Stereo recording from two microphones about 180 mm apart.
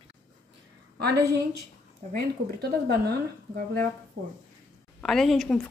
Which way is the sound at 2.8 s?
60° right (ahead or behind).